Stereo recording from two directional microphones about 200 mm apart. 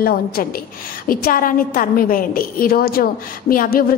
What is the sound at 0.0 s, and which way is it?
A woman's voice, 45° left (ahead or behind).